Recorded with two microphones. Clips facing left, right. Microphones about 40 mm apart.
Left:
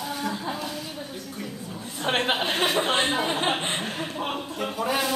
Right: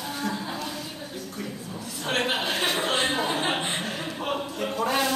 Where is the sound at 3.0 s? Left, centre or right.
Centre.